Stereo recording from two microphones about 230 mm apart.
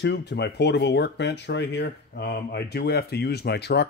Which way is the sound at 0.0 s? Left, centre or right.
Left.